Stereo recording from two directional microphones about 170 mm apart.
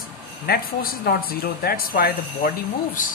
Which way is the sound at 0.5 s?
60° left (ahead or behind).